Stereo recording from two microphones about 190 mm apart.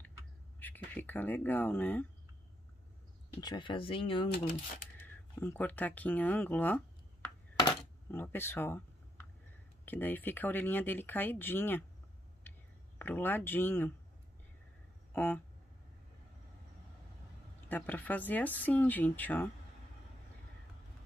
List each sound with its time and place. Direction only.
0.6 s speech: 10° left (ahead or behind)
3.3 s speech: 20° left (ahead or behind)
4.9 s speech: 10° left (ahead or behind)
7.6 s a sound: 10° left (ahead or behind)
9.8 s speech: 10° left (ahead or behind)
13.0 s speech: 10° left (ahead or behind)
15.1 s speech: 10° left (ahead or behind)
17.6 s speech: 10° left (ahead or behind)